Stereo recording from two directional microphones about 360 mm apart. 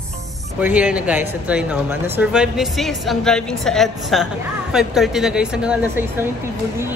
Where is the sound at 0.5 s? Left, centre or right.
Centre.